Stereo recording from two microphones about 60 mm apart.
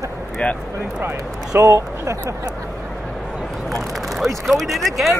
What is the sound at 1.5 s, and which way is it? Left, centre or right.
Speech, right.